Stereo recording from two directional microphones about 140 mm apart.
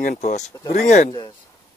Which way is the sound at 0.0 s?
65° left (ahead or behind).